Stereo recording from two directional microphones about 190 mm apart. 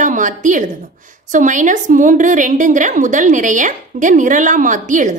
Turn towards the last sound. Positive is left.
turn(degrees=-40)  # may be behind; listen again after turning